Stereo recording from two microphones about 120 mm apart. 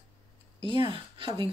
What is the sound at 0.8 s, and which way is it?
Speech, 40° right (ahead or behind).